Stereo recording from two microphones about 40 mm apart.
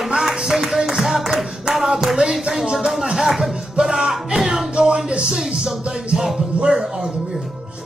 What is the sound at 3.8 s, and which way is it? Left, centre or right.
Music, centre.